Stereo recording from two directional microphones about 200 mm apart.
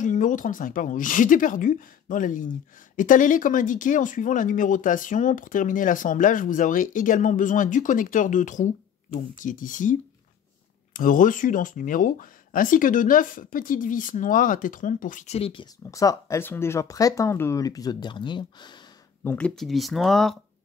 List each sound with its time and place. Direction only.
0.0 s speech: 40° left (ahead or behind); by 18.8 s 25° left (ahead or behind)
19.2 s speech: 5° left (ahead or behind)